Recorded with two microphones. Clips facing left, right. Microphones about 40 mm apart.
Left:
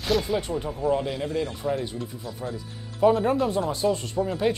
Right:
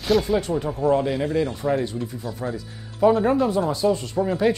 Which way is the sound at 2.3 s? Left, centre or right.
Centre.